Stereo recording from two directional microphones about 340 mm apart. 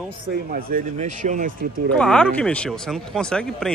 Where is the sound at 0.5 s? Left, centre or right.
Right.